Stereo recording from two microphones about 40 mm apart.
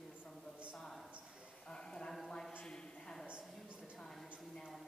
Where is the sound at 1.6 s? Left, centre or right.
Centre.